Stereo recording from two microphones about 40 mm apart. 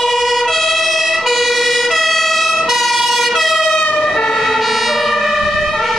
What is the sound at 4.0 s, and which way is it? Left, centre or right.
Emergency vehicle, left.